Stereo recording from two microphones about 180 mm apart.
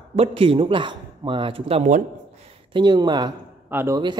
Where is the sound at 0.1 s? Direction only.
30° right (ahead or behind).